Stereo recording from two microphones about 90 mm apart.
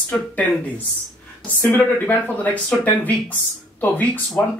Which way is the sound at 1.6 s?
20° left (ahead or behind).